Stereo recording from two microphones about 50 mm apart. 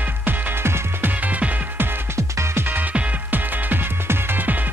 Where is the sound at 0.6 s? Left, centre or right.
Right.